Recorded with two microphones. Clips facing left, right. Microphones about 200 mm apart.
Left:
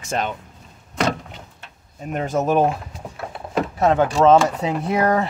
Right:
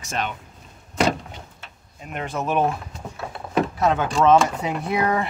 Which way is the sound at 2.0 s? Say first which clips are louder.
Left 6 dB; 40° left (ahead or behind).